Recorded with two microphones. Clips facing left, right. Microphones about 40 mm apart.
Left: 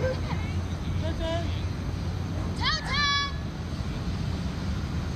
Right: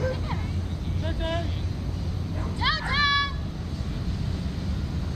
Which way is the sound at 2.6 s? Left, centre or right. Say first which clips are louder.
Right 3 dB; right.